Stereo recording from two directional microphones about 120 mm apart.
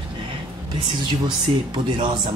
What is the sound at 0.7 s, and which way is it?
Speech, 40° right (ahead or behind).